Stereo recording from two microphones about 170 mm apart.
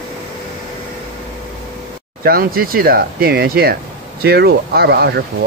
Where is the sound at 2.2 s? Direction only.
60° right (ahead or behind).